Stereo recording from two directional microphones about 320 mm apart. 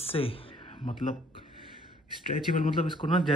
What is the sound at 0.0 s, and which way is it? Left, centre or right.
Speech, centre.